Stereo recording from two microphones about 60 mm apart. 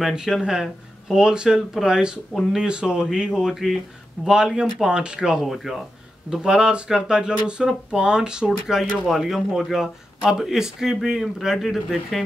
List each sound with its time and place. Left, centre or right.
0.1 s speech: centre